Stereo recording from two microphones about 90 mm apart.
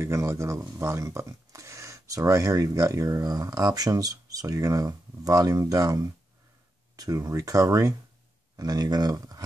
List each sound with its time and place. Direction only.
0.0 s speech: 30° right (ahead or behind)